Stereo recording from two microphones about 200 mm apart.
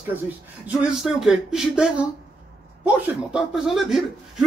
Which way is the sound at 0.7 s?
Centre (ahead or behind).